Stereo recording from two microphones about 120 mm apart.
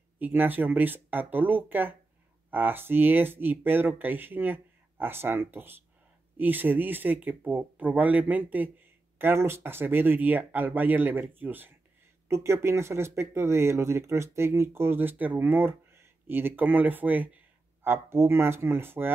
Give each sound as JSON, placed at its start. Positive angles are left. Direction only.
{"t": 0.2, "sound": "speech", "side_deg": -15}